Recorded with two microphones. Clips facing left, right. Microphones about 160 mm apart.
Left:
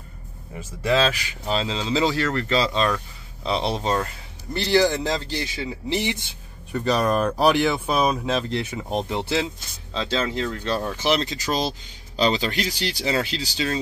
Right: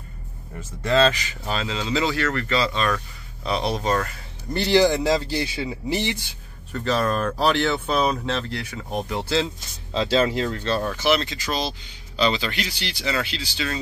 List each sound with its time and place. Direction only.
0.6 s speech: 10° left (ahead or behind)
1.5 s speech: 25° left (ahead or behind)
4.6 s speech: 10° right (ahead or behind)
6.7 s speech: 15° left (ahead or behind)
10.3 s speech: 5° right (ahead or behind)
10.6 s speech: 15° left (ahead or behind); by 13.7 s 40° left (ahead or behind)